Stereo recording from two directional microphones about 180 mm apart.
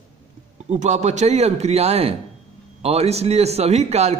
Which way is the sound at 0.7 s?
40° right (ahead or behind).